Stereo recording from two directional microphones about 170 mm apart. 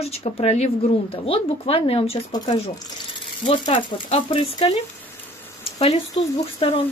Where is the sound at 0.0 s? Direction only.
40° left (ahead or behind).